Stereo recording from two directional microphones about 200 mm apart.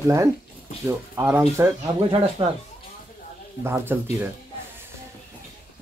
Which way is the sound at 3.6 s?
10° right (ahead or behind).